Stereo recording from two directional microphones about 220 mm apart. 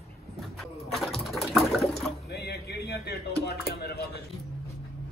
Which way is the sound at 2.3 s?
45° left (ahead or behind).